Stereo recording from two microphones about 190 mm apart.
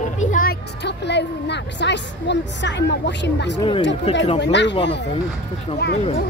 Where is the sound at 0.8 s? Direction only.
65° left (ahead or behind).